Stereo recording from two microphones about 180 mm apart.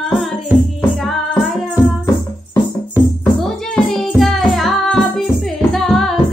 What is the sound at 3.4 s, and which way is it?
Music, centre (ahead or behind).